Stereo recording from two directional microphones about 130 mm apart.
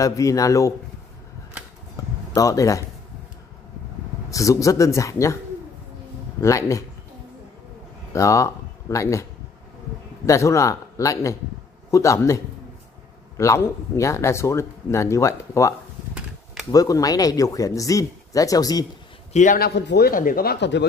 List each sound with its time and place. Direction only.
0.0 s speech: 25° left (ahead or behind)
2.3 s speech: 25° left (ahead or behind)
4.3 s speech: 25° left (ahead or behind)
6.4 s speech: 25° left (ahead or behind)
8.1 s speech: 25° left (ahead or behind)
10.2 s speech: 25° left (ahead or behind)
13.4 s speech: 25° left (ahead or behind)
16.7 s speech: 25° left (ahead or behind)
19.3 s a man's voice: 75° left (ahead or behind)
20.1 s speech: 90° left